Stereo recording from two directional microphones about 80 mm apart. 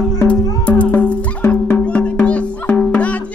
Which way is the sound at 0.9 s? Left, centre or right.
Centre.